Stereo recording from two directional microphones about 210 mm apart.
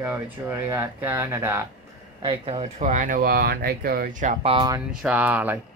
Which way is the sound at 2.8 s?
40° right (ahead or behind).